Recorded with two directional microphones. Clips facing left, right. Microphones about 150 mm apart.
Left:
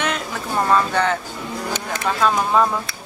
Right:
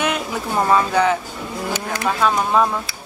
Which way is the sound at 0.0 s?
5° right (ahead or behind).